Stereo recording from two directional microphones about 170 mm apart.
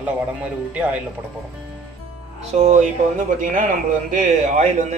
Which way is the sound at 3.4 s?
50° right (ahead or behind).